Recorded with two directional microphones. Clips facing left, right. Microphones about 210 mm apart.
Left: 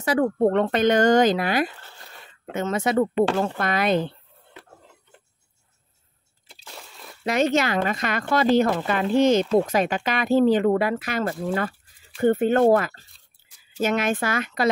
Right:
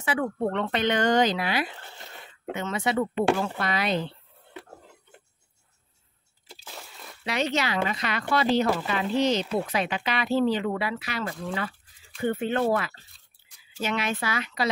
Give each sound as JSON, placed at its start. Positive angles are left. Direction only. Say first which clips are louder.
{"t": 0.0, "sound": "speech", "louder": "left 7 dB", "side_deg": 40}
{"t": 6.5, "sound": "a sound", "louder": "even", "side_deg": 0}
{"t": 7.2, "sound": "speech", "louder": "left 6 dB", "side_deg": 45}